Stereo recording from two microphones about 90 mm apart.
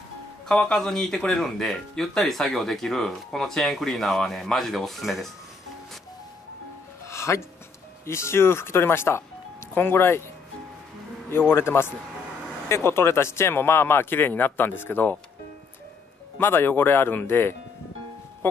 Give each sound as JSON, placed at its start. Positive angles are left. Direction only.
{"t": 0.5, "sound": "speech", "side_deg": 10}
{"t": 7.1, "sound": "music", "side_deg": 30}
{"t": 8.0, "sound": "speech", "side_deg": 30}
{"t": 11.2, "sound": "speech", "side_deg": 25}
{"t": 16.3, "sound": "speech", "side_deg": 25}